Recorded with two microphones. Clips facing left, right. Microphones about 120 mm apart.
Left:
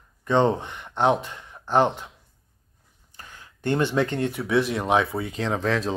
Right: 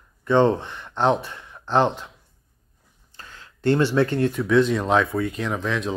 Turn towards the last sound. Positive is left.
turn(degrees=35)  # may be behind; listen again after turning